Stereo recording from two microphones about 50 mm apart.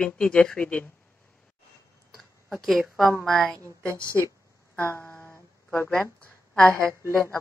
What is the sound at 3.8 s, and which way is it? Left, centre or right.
Speech, right.